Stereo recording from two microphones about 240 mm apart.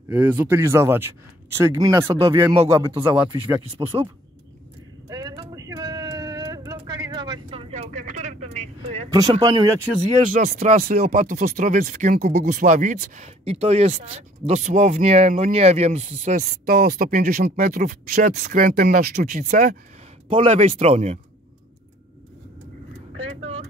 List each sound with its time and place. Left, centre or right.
0.1 s speech: centre
3.8 s speech: centre
5.1 s a sound: centre
9.1 s speech: centre
10.1 s speech: right